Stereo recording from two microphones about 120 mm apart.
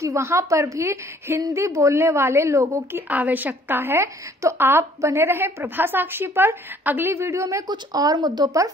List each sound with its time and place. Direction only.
0.0 s a woman's voice: 25° right (ahead or behind)
3.1 s a woman's voice: 15° right (ahead or behind); by 8.6 s 30° right (ahead or behind)